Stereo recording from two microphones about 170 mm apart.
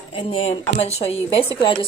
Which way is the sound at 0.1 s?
35° left (ahead or behind).